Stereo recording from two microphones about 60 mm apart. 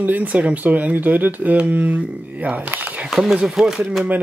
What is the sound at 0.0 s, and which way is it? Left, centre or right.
Speech, right.